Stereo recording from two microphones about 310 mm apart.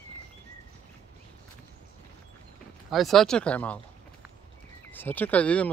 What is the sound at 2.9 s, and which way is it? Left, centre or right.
Speech, centre.